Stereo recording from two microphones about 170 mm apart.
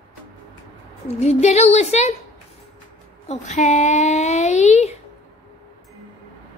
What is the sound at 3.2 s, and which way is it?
A child's voice, 40° left (ahead or behind).